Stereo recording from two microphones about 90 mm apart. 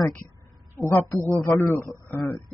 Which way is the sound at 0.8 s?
5° left (ahead or behind).